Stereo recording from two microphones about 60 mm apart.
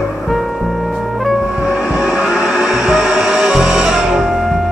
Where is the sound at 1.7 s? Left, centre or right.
Centre.